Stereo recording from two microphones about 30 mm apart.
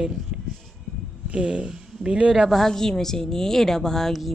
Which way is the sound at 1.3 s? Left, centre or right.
Right.